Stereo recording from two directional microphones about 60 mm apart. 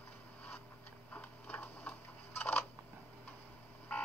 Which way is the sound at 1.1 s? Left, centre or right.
Left.